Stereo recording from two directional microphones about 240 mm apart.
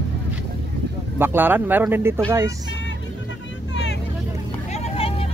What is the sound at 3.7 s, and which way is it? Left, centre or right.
Vehicle, left.